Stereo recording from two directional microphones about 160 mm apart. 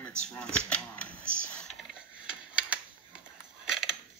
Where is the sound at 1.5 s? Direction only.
5° left (ahead or behind).